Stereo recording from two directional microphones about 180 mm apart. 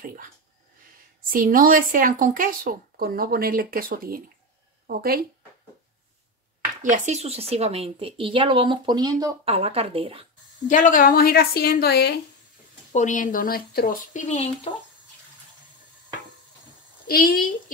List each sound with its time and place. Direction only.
0.0 s a sound: 50° right (ahead or behind)
1.3 s speech: 50° right (ahead or behind)
6.8 s speech: 45° right (ahead or behind)
10.7 s a woman's voice: 45° left (ahead or behind); by 12.2 s 65° left (ahead or behind)
12.9 s speech: 45° left (ahead or behind)
17.1 s speech: 55° left (ahead or behind)